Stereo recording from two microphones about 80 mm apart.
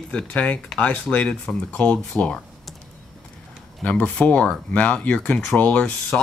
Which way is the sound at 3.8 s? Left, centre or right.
Centre.